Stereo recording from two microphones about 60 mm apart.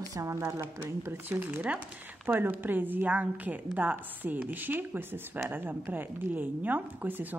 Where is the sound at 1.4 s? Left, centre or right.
Right.